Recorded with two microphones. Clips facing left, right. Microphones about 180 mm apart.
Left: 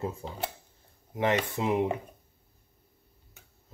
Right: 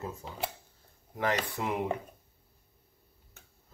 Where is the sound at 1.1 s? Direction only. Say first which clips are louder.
Left 4 dB; 25° left (ahead or behind).